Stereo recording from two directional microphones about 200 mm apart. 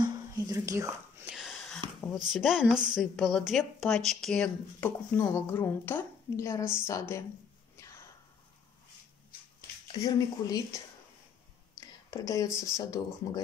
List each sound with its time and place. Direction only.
0.0 s whispering: 20° right (ahead or behind)
1.3 s a sound: centre (ahead or behind)
2.1 s a woman's voice: centre (ahead or behind); by 7.2 s 15° left (ahead or behind)
9.9 s speech: 20° left (ahead or behind)
11.8 s a sound: 15° left (ahead or behind)
12.5 s speech: 15° left (ahead or behind)